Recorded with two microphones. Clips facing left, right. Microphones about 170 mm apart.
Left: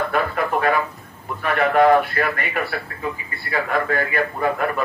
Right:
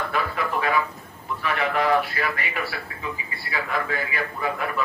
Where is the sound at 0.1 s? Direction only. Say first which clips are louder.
Left 5 dB; 50° left (ahead or behind).